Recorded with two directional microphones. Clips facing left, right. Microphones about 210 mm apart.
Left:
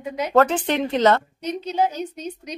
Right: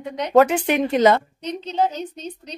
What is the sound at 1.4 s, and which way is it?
A woman's voice, 10° left (ahead or behind).